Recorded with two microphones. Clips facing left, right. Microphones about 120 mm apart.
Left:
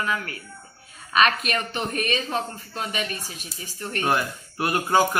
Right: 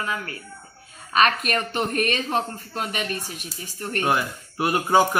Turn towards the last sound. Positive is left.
turn(degrees=-5)  # may be behind; listen again after turning